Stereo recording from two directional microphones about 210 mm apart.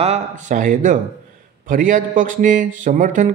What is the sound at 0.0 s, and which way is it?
Speech, 35° right (ahead or behind).